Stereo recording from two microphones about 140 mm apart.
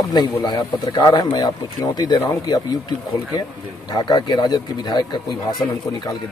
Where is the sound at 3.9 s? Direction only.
30° left (ahead or behind).